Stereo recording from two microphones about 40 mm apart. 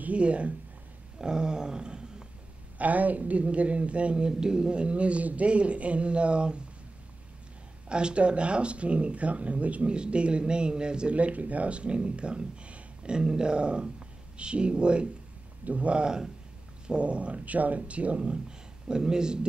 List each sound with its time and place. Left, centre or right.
0.0 s speech: right
1.2 s a sound: centre
2.8 s speech: right
4.3 s speech: centre
7.9 s speech: right